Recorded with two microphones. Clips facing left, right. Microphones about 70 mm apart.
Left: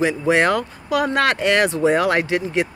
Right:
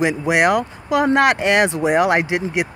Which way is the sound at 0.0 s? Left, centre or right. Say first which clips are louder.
Right 1 dB; centre.